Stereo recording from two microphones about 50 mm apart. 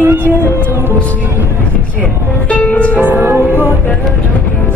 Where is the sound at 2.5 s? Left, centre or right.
Left.